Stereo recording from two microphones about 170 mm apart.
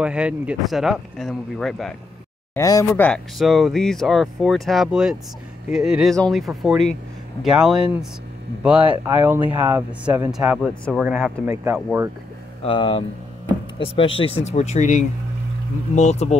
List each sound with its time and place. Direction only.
0.0 s speech: 5° right (ahead or behind)
2.5 s speech: 20° left (ahead or behind)
3.3 s speech: centre (ahead or behind)
12.6 s speech: 30° left (ahead or behind)